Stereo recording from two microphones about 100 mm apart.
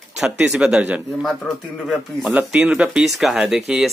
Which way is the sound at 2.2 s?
15° right (ahead or behind).